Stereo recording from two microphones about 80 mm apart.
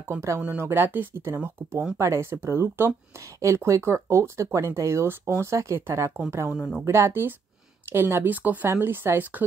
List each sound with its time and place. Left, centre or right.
0.1 s speech: right
6.5 s speech: centre
6.8 s speech: right